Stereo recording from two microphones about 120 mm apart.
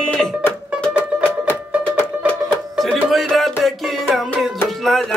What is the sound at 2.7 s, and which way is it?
Music, 5° left (ahead or behind).